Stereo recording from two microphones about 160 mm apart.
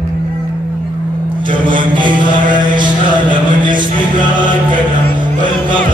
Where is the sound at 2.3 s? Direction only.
55° right (ahead or behind).